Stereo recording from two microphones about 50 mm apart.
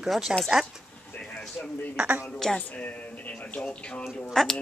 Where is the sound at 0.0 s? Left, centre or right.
Centre.